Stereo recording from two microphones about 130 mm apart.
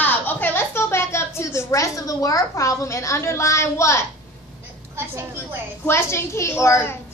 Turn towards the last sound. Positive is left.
turn(degrees=20)  # may be behind; listen again after turning